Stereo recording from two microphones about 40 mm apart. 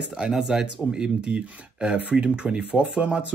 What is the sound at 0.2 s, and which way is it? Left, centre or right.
Speech, centre.